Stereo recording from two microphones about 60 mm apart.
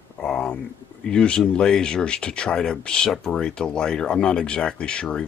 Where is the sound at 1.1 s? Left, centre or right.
Centre.